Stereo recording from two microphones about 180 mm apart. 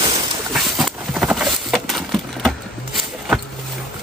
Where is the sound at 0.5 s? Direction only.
Centre (ahead or behind).